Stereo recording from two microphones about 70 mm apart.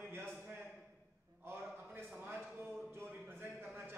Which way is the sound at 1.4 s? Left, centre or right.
Right.